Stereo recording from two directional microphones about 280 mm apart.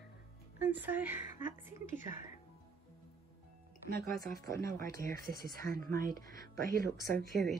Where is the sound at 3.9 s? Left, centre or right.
Right.